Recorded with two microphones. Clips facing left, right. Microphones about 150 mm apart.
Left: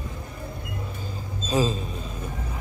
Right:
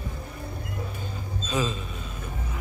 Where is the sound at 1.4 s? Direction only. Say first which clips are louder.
Left 5 dB; 35° left (ahead or behind).